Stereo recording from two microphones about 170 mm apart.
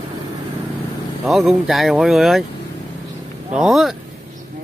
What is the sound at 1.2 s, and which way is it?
Speech, centre (ahead or behind).